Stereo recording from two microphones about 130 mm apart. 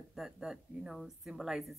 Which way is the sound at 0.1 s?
5° right (ahead or behind).